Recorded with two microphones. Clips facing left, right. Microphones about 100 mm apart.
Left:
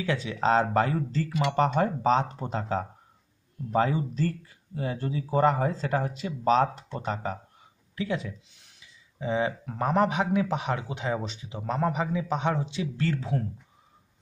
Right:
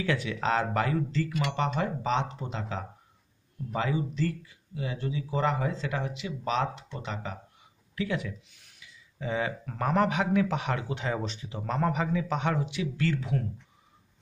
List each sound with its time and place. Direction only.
0.0 s speech: 25° left (ahead or behind)
1.6 s speech: 40° left (ahead or behind)
7.9 s a man's voice: 25° left (ahead or behind)